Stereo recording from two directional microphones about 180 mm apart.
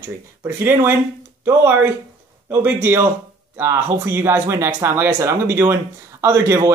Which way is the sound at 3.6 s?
15° right (ahead or behind).